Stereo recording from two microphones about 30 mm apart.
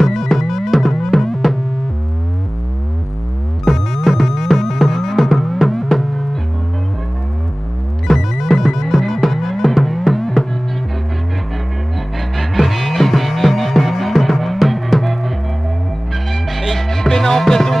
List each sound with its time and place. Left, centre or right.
0.0 s music: centre
1.3 s music: centre
3.6 s music: centre
8.1 s music: centre
12.4 s music: centre
16.7 s music: centre